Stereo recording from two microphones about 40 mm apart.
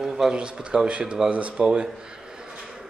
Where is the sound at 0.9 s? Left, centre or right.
Right.